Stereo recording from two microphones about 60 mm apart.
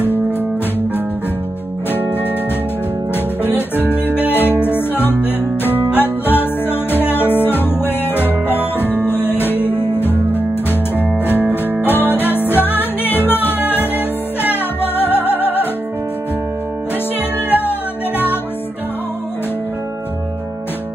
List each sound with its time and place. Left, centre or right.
3.4 s music: left
17.5 s music: left